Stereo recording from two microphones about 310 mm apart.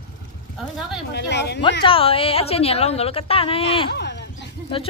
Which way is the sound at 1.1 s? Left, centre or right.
Left.